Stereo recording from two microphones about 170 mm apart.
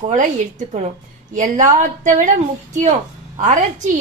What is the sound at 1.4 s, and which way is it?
A woman's voice, 50° right (ahead or behind).